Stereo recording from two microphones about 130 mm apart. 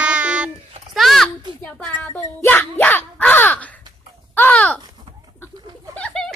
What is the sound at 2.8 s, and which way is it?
Crow, 15° left (ahead or behind).